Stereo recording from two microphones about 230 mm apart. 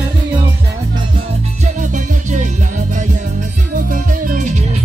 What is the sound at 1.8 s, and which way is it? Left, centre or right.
Music, right.